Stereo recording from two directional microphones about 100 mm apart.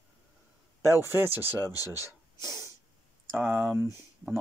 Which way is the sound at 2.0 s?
30° right (ahead or behind).